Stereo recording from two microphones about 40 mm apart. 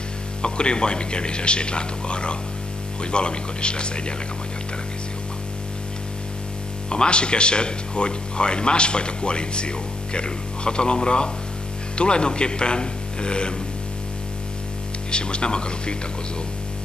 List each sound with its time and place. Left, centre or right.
0.4 s speech: left
6.9 s speech: left
15.0 s speech: left